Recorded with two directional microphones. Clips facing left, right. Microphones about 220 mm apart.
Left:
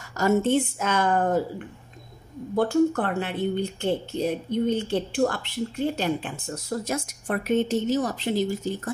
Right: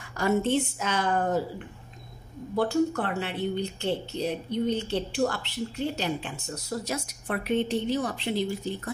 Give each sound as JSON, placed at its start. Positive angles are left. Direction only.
{"t": 0.2, "sound": "speech", "side_deg": 50}
{"t": 2.5, "sound": "speech", "side_deg": 50}